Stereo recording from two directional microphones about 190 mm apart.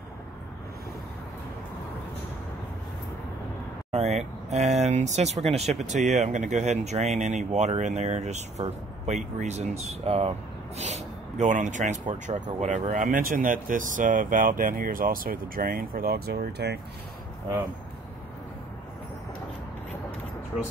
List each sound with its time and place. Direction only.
3.9 s speech: 35° right (ahead or behind); by 16.8 s 60° right (ahead or behind)